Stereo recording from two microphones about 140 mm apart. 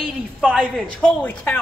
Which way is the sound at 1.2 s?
10° left (ahead or behind).